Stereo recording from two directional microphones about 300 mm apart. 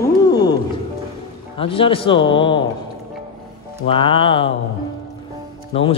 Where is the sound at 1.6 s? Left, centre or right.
Centre.